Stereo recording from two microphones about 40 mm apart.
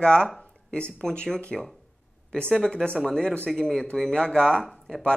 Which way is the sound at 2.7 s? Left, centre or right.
Left.